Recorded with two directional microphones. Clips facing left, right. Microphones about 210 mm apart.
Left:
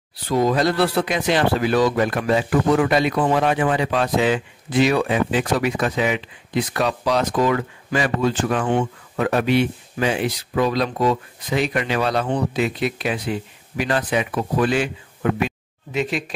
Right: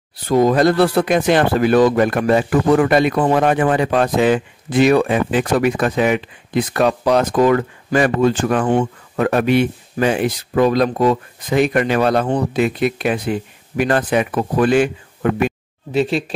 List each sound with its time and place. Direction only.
0.3 s speech: 50° right (ahead or behind)
15.9 s speech: 30° right (ahead or behind)